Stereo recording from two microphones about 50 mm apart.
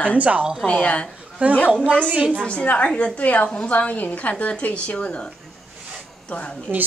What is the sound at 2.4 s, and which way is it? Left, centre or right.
A woman's voice, centre.